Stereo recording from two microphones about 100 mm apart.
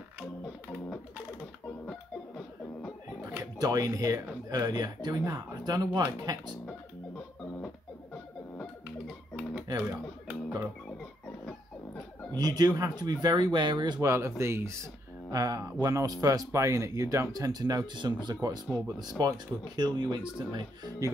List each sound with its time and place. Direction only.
1.9 s music: 10° left (ahead or behind)
3.5 s speech: 40° right (ahead or behind)
9.8 s a sound: 20° right (ahead or behind)
12.4 s speech: 40° right (ahead or behind)
14.0 s speech: 30° right (ahead or behind); by 20.9 s 50° right (ahead or behind)